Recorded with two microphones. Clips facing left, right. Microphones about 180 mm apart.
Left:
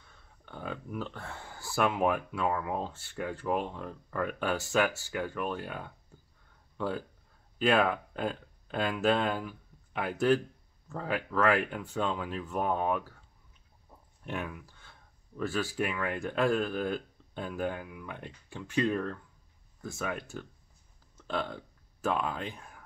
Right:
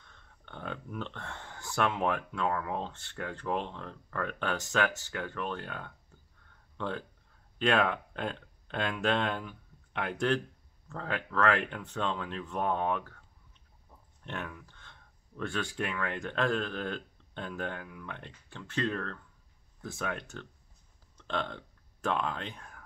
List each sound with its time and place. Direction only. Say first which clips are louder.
0.0 s speech: left 1 dB; 5° left (ahead or behind)
14.2 s speech: left 3 dB; 10° left (ahead or behind)
21.2 s a sound: left 1 dB; 5° left (ahead or behind)